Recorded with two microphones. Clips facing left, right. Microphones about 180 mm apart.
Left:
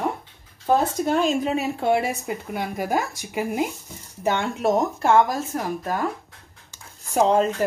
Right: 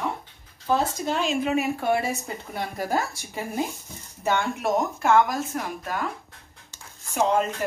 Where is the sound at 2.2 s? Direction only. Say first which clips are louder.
Left 4 dB; 10° left (ahead or behind); by 6.0 s 35° left (ahead or behind).